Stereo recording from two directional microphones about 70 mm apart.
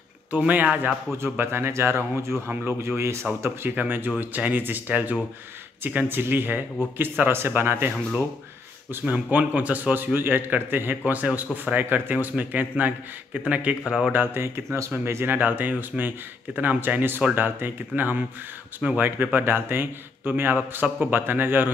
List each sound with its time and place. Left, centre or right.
0.3 s a man's voice: right
1.4 s a man's voice: right
3.7 s a man's voice: right
9.0 s a man's voice: centre
14.1 s a man's voice: right
15.3 s a man's voice: right